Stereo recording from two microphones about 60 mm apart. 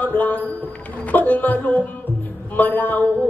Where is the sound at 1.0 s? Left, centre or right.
Left.